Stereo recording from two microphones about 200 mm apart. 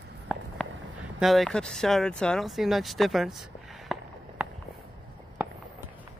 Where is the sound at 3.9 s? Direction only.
Centre (ahead or behind).